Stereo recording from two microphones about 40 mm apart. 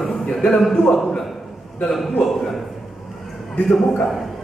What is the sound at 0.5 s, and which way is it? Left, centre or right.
A man's voice, centre.